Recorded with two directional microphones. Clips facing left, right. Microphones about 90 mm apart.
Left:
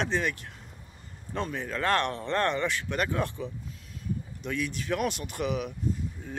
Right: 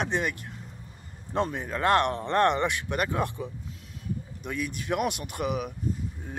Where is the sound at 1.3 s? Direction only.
25° right (ahead or behind).